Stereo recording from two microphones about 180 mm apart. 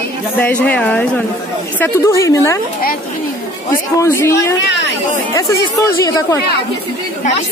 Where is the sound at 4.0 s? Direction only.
15° left (ahead or behind).